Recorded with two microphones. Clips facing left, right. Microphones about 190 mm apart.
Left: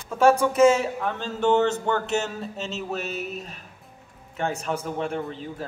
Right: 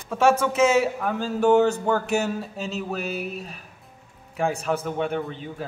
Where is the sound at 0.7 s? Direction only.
5° right (ahead or behind).